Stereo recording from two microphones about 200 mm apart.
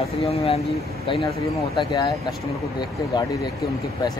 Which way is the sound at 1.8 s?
20° left (ahead or behind).